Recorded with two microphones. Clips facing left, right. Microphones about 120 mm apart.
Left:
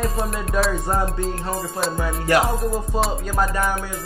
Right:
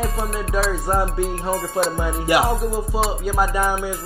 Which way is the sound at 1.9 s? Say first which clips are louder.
Left 3 dB; 10° right (ahead or behind).